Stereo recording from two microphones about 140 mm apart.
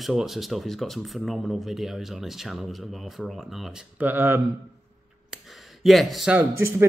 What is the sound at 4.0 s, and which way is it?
Speech, 15° right (ahead or behind).